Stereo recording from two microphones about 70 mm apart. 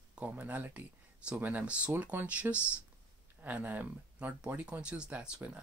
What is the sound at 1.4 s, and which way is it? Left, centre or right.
Speech, right.